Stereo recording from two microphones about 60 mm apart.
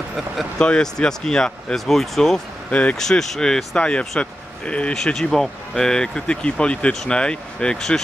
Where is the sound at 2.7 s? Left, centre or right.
Left.